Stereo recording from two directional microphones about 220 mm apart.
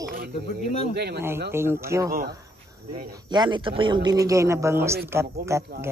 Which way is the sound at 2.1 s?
40° right (ahead or behind).